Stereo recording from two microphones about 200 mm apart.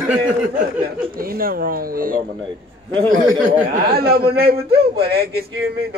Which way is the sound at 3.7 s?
50° right (ahead or behind).